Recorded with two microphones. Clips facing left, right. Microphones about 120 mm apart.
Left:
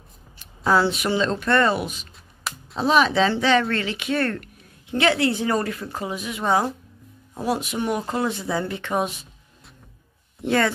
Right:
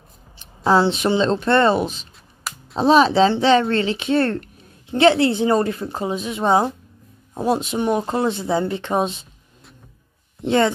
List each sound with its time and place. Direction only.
0.7 s speech: 30° right (ahead or behind)
2.1 s a sound: centre (ahead or behind)
2.8 s speech: 30° right (ahead or behind)
10.4 s speech: 25° right (ahead or behind)